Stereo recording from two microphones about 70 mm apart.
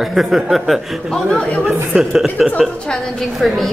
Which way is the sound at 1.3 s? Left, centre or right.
Centre.